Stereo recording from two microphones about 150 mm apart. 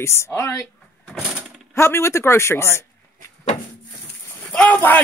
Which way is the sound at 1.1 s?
10° right (ahead or behind).